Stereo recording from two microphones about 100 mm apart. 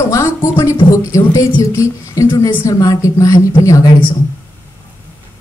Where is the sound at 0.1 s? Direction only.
35° left (ahead or behind).